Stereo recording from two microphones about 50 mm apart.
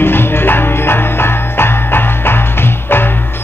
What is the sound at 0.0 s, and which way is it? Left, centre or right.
Music, left.